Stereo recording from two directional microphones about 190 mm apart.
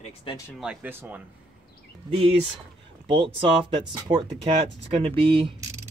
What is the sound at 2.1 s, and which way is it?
Speech, 30° right (ahead or behind).